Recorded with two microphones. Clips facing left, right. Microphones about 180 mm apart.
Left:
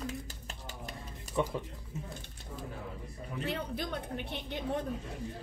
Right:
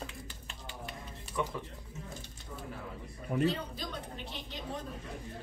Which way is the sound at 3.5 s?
60° left (ahead or behind).